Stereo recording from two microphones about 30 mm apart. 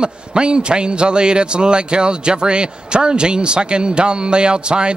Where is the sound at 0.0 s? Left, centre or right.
Right.